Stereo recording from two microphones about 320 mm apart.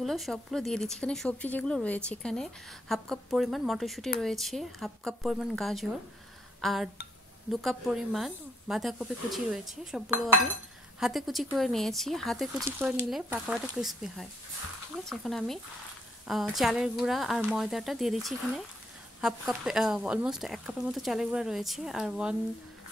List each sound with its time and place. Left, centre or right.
0.0 s speech: centre